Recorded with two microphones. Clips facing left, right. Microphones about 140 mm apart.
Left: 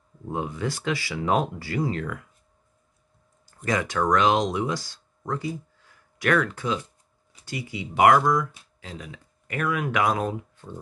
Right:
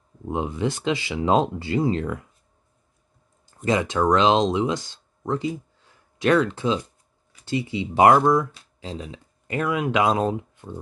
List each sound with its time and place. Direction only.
0.3 s speech: 20° right (ahead or behind)
3.4 s speech: 25° right (ahead or behind)